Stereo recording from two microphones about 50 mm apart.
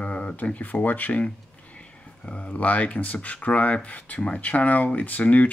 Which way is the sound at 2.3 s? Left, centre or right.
Left.